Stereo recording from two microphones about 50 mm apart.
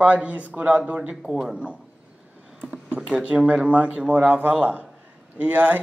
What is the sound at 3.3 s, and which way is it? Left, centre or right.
Speech, right.